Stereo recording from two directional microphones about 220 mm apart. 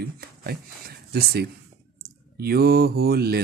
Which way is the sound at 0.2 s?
45° right (ahead or behind).